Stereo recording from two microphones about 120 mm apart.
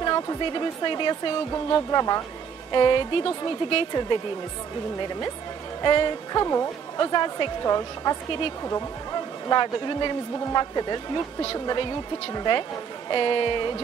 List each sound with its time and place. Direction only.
0.0 s speech: 35° left (ahead or behind)
5.8 s speech: 40° left (ahead or behind)
8.3 s speech: 50° left (ahead or behind)
9.5 s speech: 35° left (ahead or behind)